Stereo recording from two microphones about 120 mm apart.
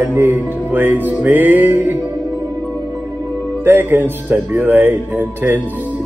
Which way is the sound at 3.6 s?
15° right (ahead or behind).